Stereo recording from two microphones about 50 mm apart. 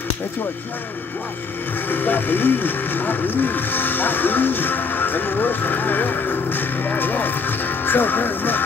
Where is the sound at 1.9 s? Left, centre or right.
Left.